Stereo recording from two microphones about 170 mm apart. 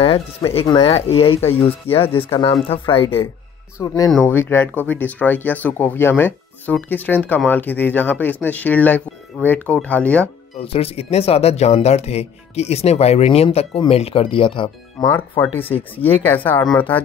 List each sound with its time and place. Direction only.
0.0 s speech: 35° left (ahead or behind)
3.8 s speech: 20° left (ahead or behind)
4.1 s speech: 5° left (ahead or behind)
10.6 s speech: 35° left (ahead or behind)
16.0 s speech: 10° left (ahead or behind)